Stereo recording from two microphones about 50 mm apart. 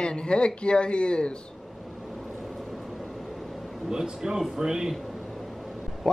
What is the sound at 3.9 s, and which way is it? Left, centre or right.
Speech, centre.